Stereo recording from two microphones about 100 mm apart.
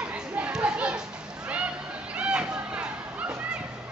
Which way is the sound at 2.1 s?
10° right (ahead or behind).